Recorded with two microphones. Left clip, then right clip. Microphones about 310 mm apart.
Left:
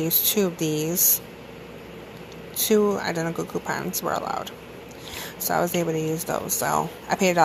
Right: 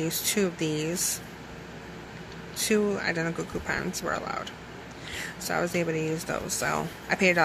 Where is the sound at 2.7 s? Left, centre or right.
Centre.